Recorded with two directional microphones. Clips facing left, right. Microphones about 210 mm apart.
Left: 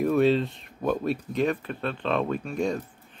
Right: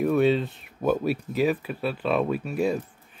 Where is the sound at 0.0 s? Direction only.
Centre (ahead or behind).